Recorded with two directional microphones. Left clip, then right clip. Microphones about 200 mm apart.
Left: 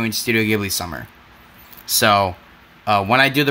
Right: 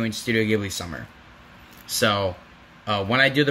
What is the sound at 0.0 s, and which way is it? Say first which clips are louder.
Speech: left 5 dB; 55° left (ahead or behind).